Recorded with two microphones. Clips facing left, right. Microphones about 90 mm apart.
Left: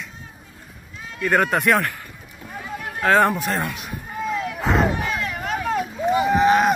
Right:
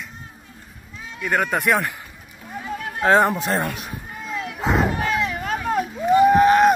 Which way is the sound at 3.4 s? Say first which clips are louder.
Right 2 dB; 35° right (ahead or behind).